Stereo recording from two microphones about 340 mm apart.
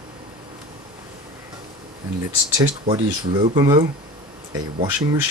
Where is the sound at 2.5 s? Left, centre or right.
Centre.